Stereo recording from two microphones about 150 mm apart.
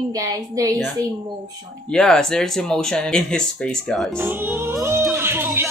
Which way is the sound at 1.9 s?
5° left (ahead or behind).